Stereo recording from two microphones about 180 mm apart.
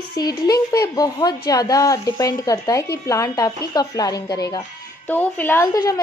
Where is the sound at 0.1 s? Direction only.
20° left (ahead or behind).